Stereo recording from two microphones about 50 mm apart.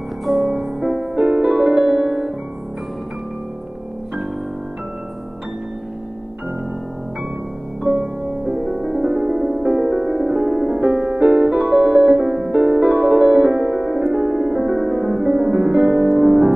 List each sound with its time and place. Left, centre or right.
0.2 s music: centre
1.1 s piano: right
7.8 s music: centre
12.4 s music: right